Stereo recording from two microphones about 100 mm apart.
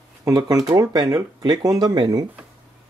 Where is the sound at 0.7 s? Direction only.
30° right (ahead or behind).